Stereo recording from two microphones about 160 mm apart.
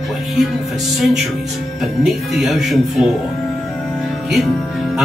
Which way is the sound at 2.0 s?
Centre (ahead or behind).